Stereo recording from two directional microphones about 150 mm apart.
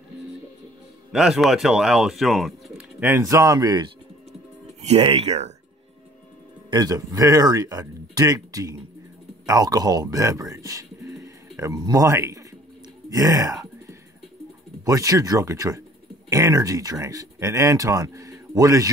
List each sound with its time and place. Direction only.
1.1 s speech: 5° right (ahead or behind)
3.0 s speech: 15° right (ahead or behind)
4.8 s speech: 40° right (ahead or behind)
6.7 s speech: 25° right (ahead or behind)
13.1 s a sound: 25° right (ahead or behind)
14.9 s speech: 20° right (ahead or behind)